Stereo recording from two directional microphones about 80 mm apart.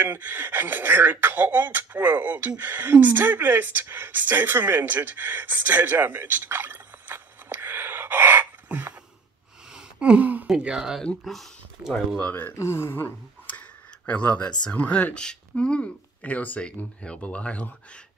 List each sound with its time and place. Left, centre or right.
0.0 s speech: right
9.8 s gasp: centre
10.4 s speech: centre
11.0 s speech: centre
12.2 s speech: left
14.0 s speech: centre